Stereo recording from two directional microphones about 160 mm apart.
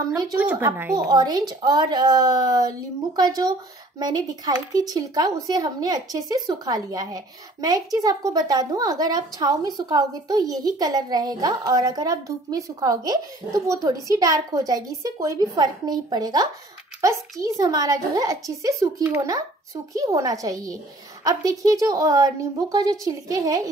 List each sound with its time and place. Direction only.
0.0 s speech: 25° right (ahead or behind)
0.4 s speech: 15° right (ahead or behind)